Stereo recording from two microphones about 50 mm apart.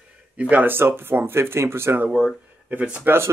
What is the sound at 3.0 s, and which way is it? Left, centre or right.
Speech, right.